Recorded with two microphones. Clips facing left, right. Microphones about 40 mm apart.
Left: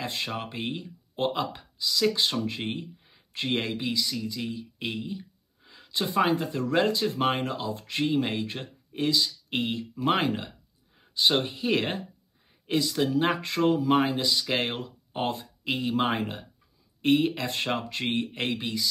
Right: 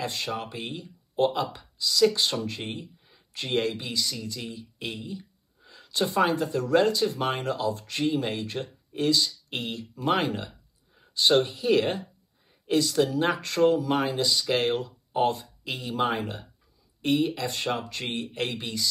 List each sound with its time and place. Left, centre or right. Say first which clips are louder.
0.0 s speech: right 1 dB; centre
18.4 s speech: left 1 dB; centre